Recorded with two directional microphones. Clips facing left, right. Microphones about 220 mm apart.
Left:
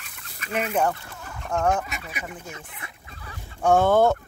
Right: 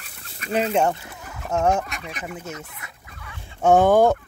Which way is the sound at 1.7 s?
Centre (ahead or behind).